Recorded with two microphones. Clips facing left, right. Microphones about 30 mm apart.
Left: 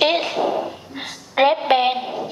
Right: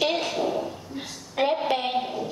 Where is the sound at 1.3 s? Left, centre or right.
Left.